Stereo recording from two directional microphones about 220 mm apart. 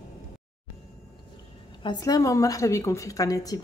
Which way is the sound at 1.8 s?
20° left (ahead or behind).